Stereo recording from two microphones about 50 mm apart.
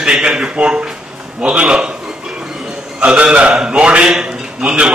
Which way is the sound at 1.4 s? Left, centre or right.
Right.